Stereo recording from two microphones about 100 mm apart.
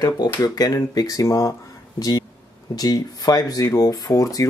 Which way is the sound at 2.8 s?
40° left (ahead or behind).